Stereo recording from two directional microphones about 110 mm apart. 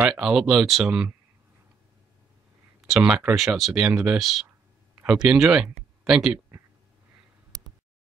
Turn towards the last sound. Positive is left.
turn(degrees=-5)  # may be behind; listen again after turning